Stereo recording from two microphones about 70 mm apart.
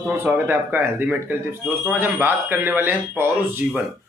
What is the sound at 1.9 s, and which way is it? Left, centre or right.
A man's voice, right.